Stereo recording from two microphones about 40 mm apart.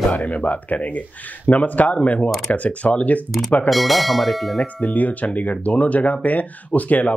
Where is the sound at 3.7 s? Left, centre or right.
Centre.